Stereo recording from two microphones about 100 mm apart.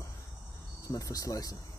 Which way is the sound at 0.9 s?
35° left (ahead or behind).